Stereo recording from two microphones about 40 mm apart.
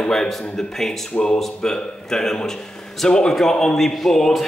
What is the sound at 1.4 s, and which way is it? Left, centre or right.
A man's voice, centre.